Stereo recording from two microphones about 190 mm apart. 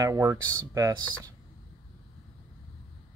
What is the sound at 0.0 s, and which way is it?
Speech, 15° right (ahead or behind).